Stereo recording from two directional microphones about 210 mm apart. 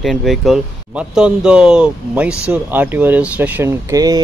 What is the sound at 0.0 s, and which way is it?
Speech, centre (ahead or behind).